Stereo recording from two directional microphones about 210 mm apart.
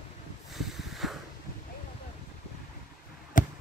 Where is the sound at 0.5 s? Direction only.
Centre (ahead or behind).